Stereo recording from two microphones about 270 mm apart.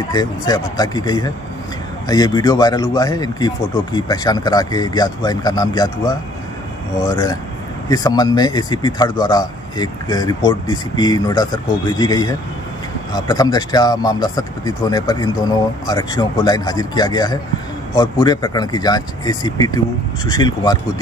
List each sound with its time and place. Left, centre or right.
0.1 s speech: centre
7.9 s speech: centre